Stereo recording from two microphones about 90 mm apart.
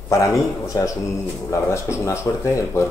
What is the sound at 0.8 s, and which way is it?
Speech, 40° left (ahead or behind).